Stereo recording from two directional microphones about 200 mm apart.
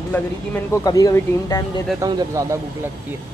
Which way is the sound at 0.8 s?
15° left (ahead or behind).